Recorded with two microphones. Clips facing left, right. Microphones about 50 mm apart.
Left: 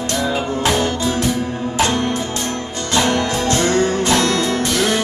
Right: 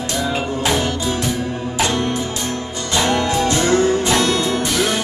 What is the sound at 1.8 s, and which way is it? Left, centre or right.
Music, left.